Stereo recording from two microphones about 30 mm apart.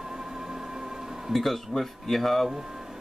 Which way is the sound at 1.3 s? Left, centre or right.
Centre.